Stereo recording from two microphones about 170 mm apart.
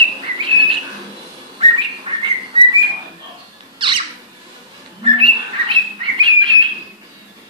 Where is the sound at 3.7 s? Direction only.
30° right (ahead or behind).